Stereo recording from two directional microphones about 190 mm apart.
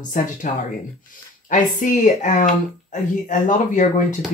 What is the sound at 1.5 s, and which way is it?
Speech, 45° left (ahead or behind).